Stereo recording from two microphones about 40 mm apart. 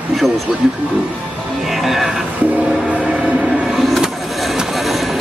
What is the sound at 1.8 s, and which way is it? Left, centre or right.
Speech, centre.